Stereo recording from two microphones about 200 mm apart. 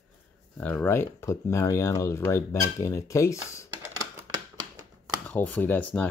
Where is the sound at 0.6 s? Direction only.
10° left (ahead or behind).